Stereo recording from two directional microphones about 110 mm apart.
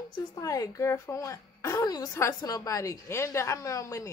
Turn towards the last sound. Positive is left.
turn(degrees=30)  # may be behind; listen again after turning